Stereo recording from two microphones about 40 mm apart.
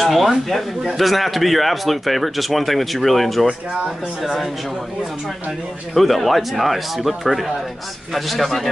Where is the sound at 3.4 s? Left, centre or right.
Right.